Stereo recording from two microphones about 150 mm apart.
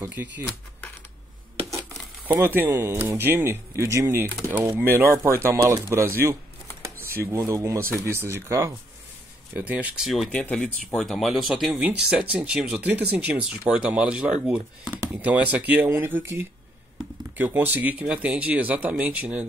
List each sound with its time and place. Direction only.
0.0 s speech: 15° right (ahead or behind)
2.3 s speech: 15° right (ahead or behind)